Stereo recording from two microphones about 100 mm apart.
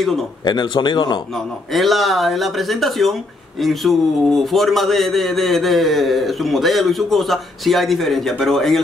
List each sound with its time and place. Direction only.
0.5 s speech: 50° left (ahead or behind)
1.7 s a man's voice: centre (ahead or behind)